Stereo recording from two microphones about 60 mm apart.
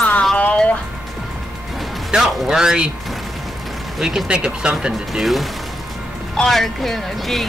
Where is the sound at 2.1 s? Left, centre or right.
Centre.